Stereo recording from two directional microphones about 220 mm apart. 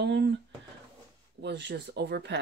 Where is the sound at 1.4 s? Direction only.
50° right (ahead or behind).